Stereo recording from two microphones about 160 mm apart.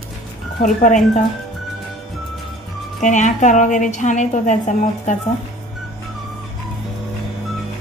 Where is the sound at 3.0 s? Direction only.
50° left (ahead or behind).